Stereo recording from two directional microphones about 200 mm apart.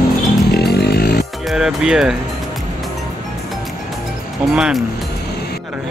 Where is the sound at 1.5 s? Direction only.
Centre (ahead or behind).